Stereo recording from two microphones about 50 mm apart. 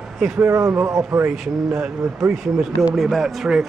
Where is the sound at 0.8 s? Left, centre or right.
Right.